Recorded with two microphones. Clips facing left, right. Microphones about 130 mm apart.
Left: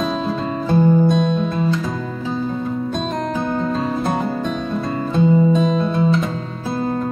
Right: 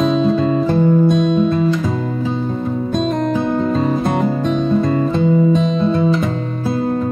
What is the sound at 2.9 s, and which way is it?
Music, centre (ahead or behind).